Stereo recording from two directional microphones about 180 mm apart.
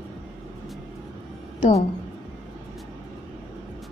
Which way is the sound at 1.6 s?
35° left (ahead or behind).